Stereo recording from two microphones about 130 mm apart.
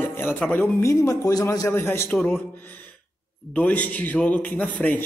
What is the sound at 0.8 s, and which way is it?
Speech, 25° left (ahead or behind).